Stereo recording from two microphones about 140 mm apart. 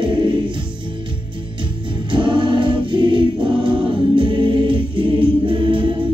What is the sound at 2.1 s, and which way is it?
Music, 35° right (ahead or behind).